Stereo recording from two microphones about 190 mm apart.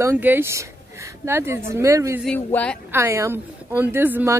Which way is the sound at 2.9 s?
15° right (ahead or behind).